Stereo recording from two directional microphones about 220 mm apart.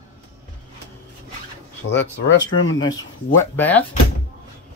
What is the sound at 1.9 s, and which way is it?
Speech, 55° left (ahead or behind).